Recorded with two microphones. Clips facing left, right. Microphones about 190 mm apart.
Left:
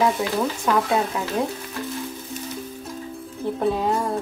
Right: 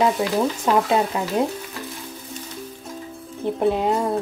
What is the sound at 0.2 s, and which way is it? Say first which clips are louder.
Speech: right 2 dB; 20° right (ahead or behind).